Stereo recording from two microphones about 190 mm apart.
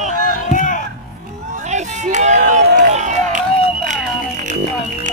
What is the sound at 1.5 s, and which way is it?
Hubbub, 40° right (ahead or behind).